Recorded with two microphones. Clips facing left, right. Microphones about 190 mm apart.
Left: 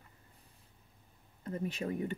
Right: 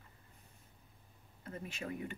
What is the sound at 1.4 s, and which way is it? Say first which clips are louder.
Speech: left 7 dB; 35° left (ahead or behind).